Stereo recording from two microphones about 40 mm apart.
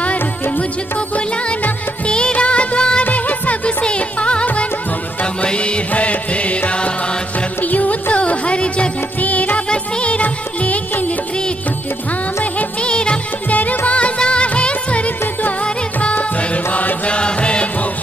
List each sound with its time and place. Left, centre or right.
0.0 s music: left
2.0 s music of bollywood: left
3.0 s music: left
3.8 s music: left
9.2 s music: left
12.8 s music: left
13.5 s music: left
16.7 s mantra: left